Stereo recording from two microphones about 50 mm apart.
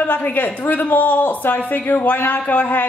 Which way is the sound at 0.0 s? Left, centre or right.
Left.